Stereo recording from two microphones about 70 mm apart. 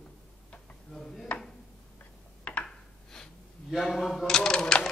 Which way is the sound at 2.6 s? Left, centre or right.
Centre.